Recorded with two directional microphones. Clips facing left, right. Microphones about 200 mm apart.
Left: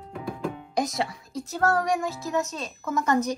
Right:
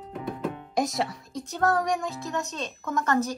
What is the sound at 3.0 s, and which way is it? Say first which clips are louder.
Speech: left 2 dB; 15° left (ahead or behind).